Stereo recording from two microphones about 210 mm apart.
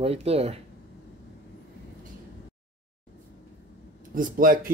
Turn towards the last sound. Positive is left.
turn(degrees=-40)  # may be behind; listen again after turning